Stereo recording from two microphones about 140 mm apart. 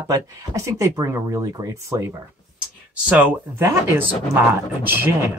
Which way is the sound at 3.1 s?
10° right (ahead or behind).